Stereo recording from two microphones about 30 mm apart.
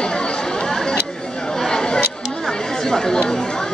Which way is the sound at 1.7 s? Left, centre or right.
Left.